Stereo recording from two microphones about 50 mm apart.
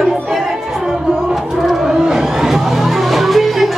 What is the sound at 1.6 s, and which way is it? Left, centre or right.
Music, centre.